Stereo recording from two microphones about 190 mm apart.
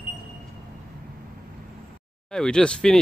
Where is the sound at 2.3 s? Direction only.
5° left (ahead or behind).